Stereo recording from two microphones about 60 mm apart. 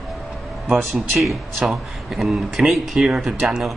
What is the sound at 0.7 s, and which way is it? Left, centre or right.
Speech, centre.